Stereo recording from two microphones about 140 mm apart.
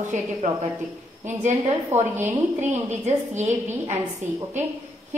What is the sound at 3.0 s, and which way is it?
Speech, 55° right (ahead or behind).